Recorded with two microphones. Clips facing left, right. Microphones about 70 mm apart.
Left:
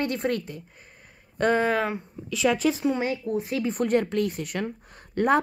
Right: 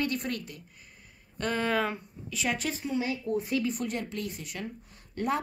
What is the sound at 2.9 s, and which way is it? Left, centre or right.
Speech, left.